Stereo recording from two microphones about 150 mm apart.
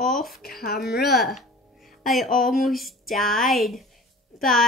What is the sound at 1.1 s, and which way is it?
A woman's voice, centre (ahead or behind).